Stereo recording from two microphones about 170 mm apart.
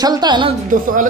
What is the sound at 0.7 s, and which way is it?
Speech, 55° right (ahead or behind).